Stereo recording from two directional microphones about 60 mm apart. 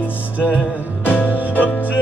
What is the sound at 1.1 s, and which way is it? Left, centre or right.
Music, left.